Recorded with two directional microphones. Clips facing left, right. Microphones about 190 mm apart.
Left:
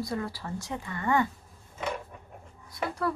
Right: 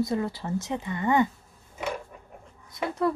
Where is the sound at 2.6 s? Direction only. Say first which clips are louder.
Right 4 dB; 20° right (ahead or behind).